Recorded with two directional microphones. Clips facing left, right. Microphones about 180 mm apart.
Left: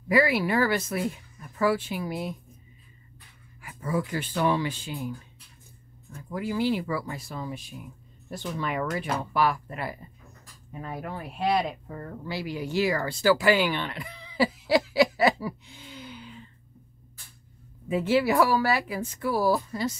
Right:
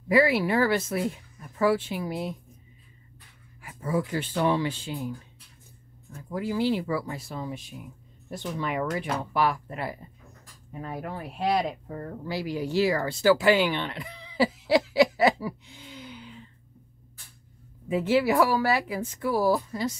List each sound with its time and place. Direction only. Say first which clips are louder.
0.1 s speech: right 1 dB; 25° right (ahead or behind)
3.6 s speech: right 1 dB; 30° right (ahead or behind)
6.2 s speech: right 1 dB; 30° right (ahead or behind)
10.7 s speech: right 1 dB; 40° right (ahead or behind); by 16.3 s 15° right (ahead or behind)
17.8 s speech: even; 15° right (ahead or behind)